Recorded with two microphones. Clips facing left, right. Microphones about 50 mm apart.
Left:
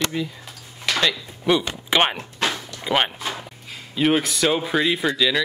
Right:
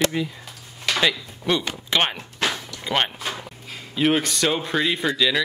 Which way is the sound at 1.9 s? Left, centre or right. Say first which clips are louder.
Left 3 dB; centre.